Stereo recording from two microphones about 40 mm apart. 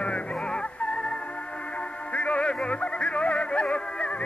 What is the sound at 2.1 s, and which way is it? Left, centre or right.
Music, left.